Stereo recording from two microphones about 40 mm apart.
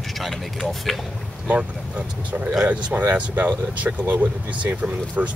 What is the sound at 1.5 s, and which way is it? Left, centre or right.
Speech, right.